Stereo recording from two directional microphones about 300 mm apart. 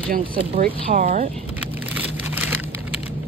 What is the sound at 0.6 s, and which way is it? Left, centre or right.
Speech, right.